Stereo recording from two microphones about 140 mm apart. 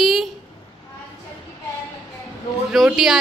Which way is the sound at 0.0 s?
Centre (ahead or behind).